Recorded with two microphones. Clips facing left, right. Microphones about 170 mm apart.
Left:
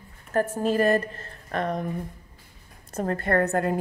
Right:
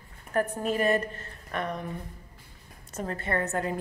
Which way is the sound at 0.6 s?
35° left (ahead or behind).